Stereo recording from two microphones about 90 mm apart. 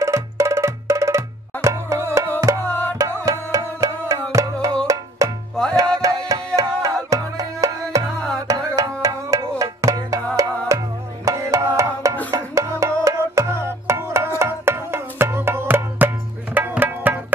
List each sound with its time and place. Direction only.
0.0 s music: 35° right (ahead or behind)
2.6 s music: 20° left (ahead or behind)
3.3 s music: 35° right (ahead or behind); by 17.2 s 20° right (ahead or behind)